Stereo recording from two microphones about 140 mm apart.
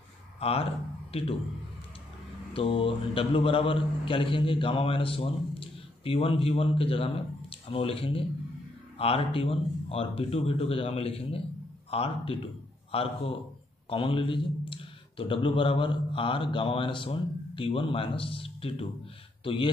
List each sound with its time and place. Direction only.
0.4 s speech: 45° left (ahead or behind)
2.5 s a man's voice: 40° left (ahead or behind)